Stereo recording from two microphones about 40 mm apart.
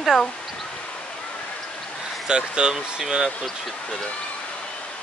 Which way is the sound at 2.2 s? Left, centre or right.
Right.